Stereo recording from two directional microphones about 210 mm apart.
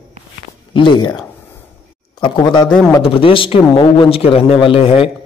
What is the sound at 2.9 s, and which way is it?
Speech, 25° left (ahead or behind).